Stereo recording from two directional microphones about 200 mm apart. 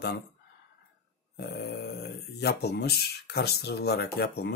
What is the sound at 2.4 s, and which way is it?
Speech, 55° left (ahead or behind).